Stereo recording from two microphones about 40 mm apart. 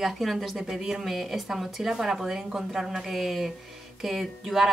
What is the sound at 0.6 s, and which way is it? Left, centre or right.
Speech, centre.